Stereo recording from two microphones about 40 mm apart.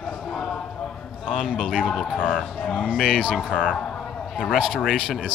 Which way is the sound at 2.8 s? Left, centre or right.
Right.